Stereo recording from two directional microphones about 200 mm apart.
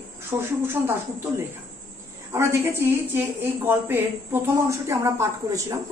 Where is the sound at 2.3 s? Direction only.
10° right (ahead or behind).